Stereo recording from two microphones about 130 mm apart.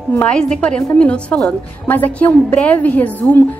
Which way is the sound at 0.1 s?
10° left (ahead or behind).